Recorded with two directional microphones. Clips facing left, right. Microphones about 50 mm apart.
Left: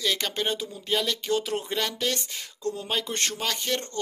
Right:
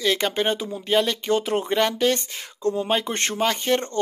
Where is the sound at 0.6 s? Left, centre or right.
Right.